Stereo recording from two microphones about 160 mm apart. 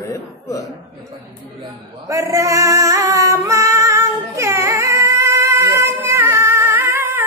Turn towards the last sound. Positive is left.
turn(degrees=-15)  # may be behind; listen again after turning